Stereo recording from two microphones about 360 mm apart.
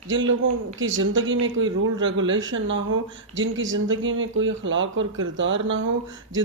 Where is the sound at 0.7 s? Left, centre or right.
Right.